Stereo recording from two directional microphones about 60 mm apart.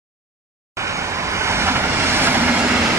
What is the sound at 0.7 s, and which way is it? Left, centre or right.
Vehicle, right.